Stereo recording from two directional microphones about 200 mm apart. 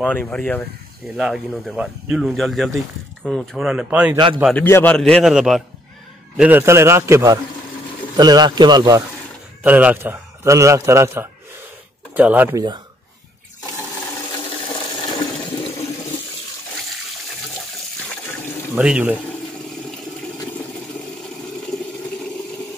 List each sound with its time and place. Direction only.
0.0 s speech: 5° left (ahead or behind)
4.6 s a man's voice: 10° left (ahead or behind); by 9.0 s 20° right (ahead or behind)
9.6 s a man's voice: 10° right (ahead or behind)
18.8 s speech: 5° right (ahead or behind)